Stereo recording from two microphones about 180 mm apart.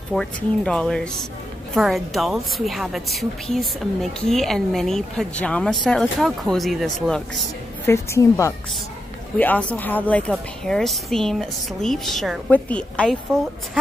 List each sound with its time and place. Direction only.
0.1 s a woman's voice: 5° left (ahead or behind)
7.8 s a woman's voice: 15° left (ahead or behind)